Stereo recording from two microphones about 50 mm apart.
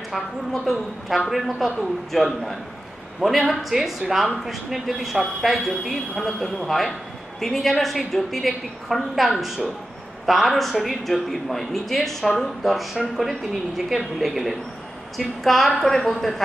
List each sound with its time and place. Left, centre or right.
0.1 s a woman's voice: centre